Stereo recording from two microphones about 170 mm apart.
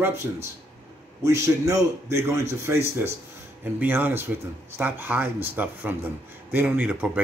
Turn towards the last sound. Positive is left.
turn(degrees=-10)  # may be behind; listen again after turning